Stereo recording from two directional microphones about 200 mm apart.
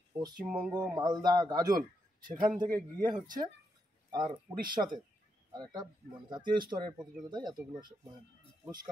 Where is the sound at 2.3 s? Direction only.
45° right (ahead or behind).